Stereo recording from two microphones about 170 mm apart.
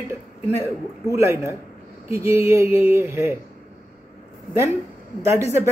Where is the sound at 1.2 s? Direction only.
15° right (ahead or behind).